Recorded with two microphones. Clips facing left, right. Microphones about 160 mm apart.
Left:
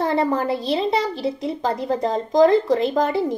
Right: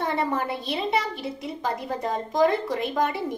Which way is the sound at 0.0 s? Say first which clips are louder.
Left 6 dB; 30° left (ahead or behind).